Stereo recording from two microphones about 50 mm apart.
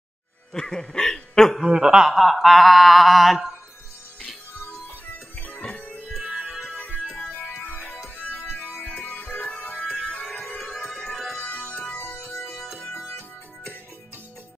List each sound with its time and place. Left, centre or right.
0.5 s a sound: centre
1.6 s chuckle: centre
2.1 s a sound: centre
6.2 s music: right
8.5 s music: left
11.1 s music: centre
11.3 s music: left
12.0 s music: left
12.7 s music: left